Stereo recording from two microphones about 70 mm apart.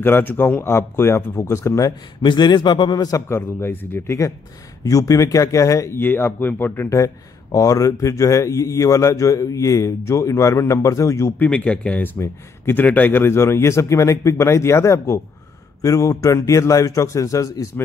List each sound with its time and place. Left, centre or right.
0.0 s speech: left
1.8 s a man's voice: left
3.2 s speech: left
4.8 s a man's voice: left
5.9 s speech: left
7.5 s a man's voice: left
11.3 s speech: centre
12.2 s speech: left
12.8 s a man's voice: left